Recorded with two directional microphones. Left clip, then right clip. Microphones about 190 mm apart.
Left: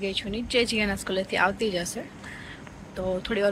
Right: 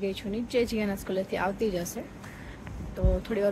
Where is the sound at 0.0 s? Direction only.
10° right (ahead or behind).